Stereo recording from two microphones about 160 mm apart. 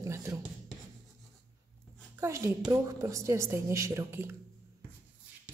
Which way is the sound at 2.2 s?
20° right (ahead or behind).